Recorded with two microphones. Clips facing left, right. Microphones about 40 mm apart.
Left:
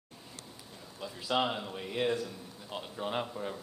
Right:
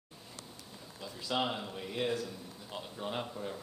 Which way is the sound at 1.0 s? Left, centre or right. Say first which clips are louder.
Left 3 dB; centre.